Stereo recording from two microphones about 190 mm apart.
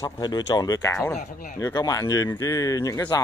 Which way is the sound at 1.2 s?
45° left (ahead or behind).